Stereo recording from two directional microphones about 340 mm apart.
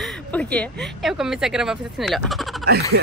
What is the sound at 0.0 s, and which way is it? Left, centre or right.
Speech, centre.